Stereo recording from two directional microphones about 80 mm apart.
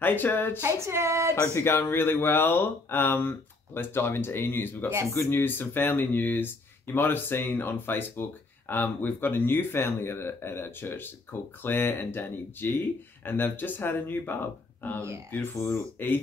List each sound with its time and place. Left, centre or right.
0.0 s speech: left
0.7 s female singing: right
1.3 s speech: left